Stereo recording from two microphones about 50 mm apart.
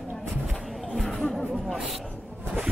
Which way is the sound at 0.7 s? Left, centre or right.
Centre.